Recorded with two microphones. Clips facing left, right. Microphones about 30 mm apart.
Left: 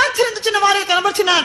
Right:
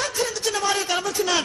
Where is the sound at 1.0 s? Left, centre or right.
Left.